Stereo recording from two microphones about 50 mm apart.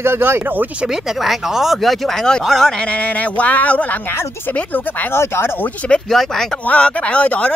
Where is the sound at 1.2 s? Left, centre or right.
Centre.